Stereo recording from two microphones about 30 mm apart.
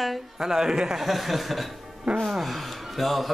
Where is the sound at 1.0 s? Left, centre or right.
Centre.